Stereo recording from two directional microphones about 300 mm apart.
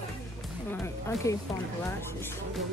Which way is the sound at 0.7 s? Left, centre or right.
Centre.